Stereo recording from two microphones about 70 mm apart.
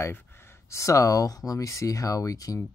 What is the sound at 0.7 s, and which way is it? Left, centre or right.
Speech, left.